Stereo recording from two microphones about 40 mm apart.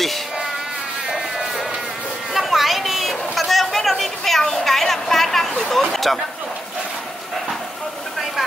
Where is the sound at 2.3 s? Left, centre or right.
Centre.